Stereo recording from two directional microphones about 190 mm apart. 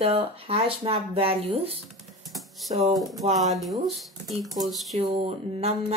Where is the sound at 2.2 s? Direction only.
Centre (ahead or behind).